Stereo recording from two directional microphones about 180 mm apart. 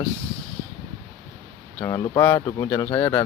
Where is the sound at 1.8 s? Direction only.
20° left (ahead or behind).